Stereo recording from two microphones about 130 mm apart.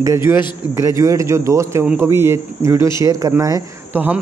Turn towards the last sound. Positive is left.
turn(degrees=-15)  # may be behind; listen again after turning